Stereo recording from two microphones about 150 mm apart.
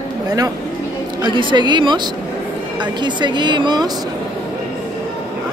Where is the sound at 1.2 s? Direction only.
30° right (ahead or behind).